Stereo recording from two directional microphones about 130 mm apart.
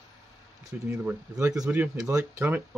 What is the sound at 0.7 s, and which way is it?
Speech, 10° right (ahead or behind).